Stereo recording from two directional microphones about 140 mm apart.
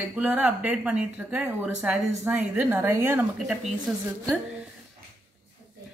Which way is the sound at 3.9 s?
Centre (ahead or behind).